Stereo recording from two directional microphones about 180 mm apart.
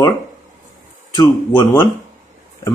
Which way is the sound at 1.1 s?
25° left (ahead or behind).